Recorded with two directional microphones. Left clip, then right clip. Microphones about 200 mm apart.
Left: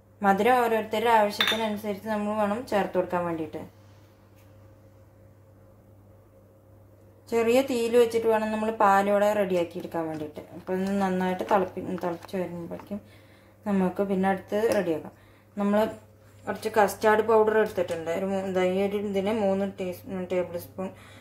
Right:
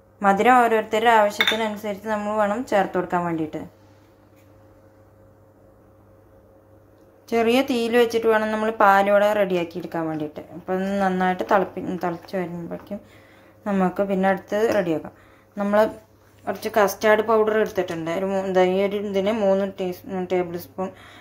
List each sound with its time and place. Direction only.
0.2 s cutlery: 20° right (ahead or behind)
7.2 s speech: 15° right (ahead or behind)